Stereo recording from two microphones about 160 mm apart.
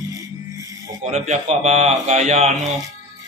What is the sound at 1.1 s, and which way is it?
A man's voice, 45° right (ahead or behind).